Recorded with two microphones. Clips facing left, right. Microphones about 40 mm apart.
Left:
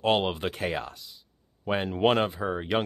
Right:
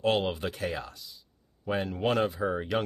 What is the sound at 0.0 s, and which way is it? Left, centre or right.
Speech, left.